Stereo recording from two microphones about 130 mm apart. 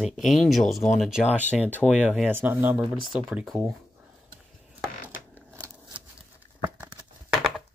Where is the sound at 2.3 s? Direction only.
15° right (ahead or behind).